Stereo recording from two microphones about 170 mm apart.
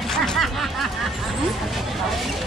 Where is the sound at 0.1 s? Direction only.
Centre (ahead or behind).